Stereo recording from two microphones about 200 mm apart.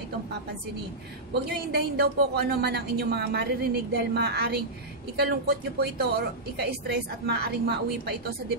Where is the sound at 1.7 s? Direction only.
55° right (ahead or behind).